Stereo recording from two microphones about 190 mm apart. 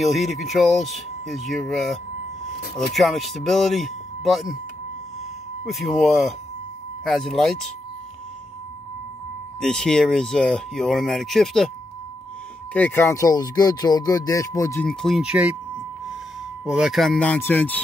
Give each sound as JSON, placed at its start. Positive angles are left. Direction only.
{"t": 0.0, "sound": "speech", "side_deg": 0}
{"t": 5.7, "sound": "speech", "side_deg": 0}
{"t": 9.6, "sound": "speech", "side_deg": 5}
{"t": 12.7, "sound": "speech", "side_deg": 10}
{"t": 14.9, "sound": "speech", "side_deg": 0}
{"t": 16.6, "sound": "speech", "side_deg": -5}